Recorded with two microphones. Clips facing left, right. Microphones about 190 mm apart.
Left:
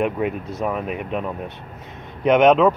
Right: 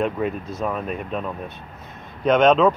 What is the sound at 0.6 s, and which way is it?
Speech, 15° left (ahead or behind).